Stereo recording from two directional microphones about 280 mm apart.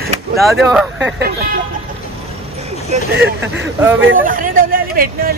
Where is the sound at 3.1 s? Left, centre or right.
Right.